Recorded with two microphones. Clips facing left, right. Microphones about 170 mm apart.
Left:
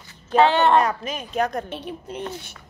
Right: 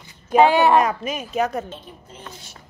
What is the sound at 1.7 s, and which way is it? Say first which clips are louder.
Speech: left 7 dB; 70° left (ahead or behind).